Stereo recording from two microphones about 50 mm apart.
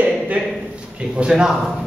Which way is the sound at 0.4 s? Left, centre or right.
Right.